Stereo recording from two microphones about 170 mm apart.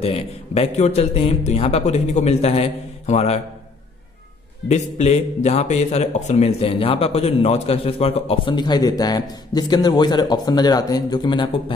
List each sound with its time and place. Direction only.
0.0 s a man's voice: 35° left (ahead or behind)
4.6 s a man's voice: 40° left (ahead or behind); by 11.5 s 25° left (ahead or behind)